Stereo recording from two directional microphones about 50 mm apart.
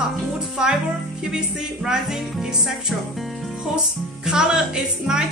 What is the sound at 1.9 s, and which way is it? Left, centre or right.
Speech, centre.